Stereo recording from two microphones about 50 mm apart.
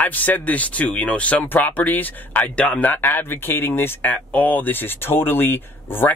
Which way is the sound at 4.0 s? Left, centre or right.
Left.